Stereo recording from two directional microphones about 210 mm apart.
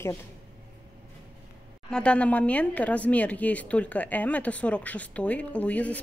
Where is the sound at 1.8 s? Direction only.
5° left (ahead or behind).